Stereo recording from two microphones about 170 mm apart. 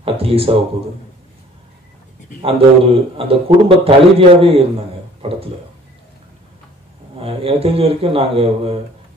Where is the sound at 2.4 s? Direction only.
35° right (ahead or behind).